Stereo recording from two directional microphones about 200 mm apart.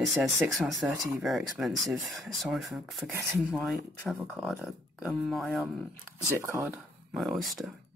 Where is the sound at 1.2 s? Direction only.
Centre (ahead or behind).